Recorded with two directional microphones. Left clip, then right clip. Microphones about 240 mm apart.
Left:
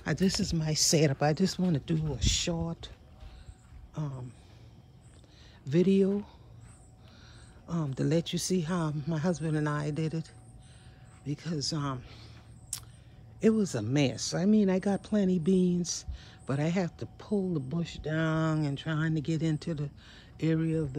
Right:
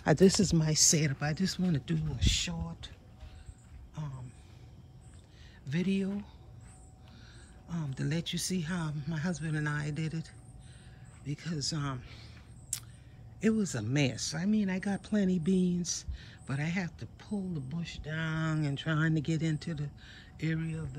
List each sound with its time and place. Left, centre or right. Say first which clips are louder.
0.0 s speech: right 6 dB; centre; by 2.9 s left
5.7 s speech: left 9 dB; centre
7.6 s speech: left 7 dB; centre
12.7 s a sound: right 1 dB; centre
13.4 s speech: left 5 dB; centre